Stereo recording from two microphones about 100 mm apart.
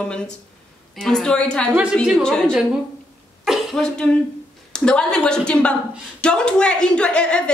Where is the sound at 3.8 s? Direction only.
10° left (ahead or behind).